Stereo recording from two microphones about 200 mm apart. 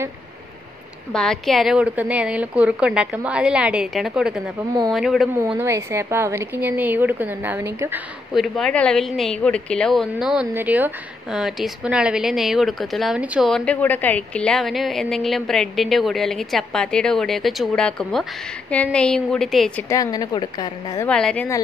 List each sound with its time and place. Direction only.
1.1 s a woman's voice: centre (ahead or behind)
8.4 s a woman's voice: 5° left (ahead or behind)
19.9 s a woman's voice: 20° left (ahead or behind)
21.1 s a woman's voice: 5° left (ahead or behind)